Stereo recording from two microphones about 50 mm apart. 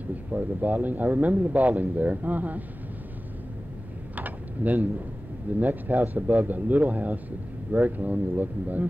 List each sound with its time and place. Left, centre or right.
0.1 s speech: right
4.1 s mechanisms: right
5.6 s speech: right